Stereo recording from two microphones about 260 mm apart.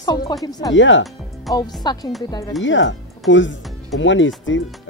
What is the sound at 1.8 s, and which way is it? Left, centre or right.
Speech, centre.